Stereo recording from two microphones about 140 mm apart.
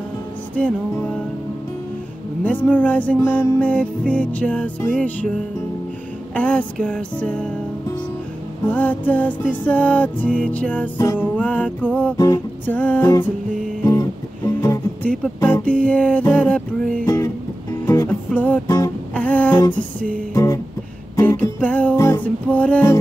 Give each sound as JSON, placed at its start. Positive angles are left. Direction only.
{"t": 2.4, "sound": "music", "side_deg": 10}
{"t": 6.3, "sound": "music", "side_deg": 5}
{"t": 8.6, "sound": "music", "side_deg": 10}
{"t": 15.2, "sound": "music", "side_deg": 10}
{"t": 17.0, "sound": "music", "side_deg": 20}
{"t": 18.3, "sound": "music", "side_deg": 10}
{"t": 20.3, "sound": "music", "side_deg": 20}